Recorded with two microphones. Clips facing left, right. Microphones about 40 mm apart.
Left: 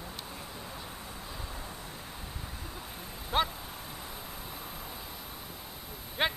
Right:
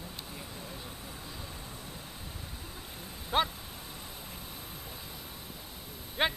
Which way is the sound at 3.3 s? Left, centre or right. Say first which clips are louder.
Even; centre.